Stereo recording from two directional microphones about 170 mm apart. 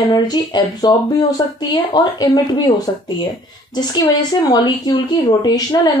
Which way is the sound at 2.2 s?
25° left (ahead or behind).